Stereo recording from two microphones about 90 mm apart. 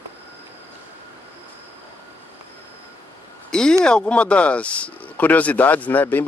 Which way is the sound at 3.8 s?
10° left (ahead or behind).